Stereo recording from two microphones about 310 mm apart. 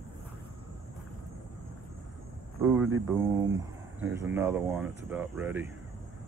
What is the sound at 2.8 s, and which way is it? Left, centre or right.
Speech, centre.